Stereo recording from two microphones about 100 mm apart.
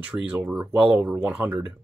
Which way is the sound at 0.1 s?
15° right (ahead or behind).